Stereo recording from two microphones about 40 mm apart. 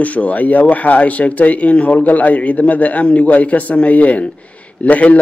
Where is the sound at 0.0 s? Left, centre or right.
Left.